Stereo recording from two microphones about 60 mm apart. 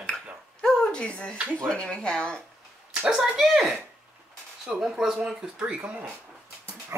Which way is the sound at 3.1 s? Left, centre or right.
Centre.